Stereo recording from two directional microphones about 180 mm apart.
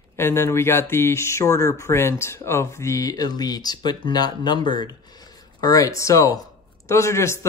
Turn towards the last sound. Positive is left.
turn(degrees=15)  # may be behind; listen again after turning